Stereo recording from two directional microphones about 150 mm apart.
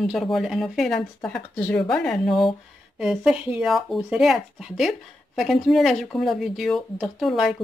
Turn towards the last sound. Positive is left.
turn(degrees=0)  # may be behind; listen again after turning